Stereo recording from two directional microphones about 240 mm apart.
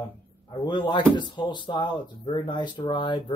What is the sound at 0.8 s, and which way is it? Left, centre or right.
Speech, centre.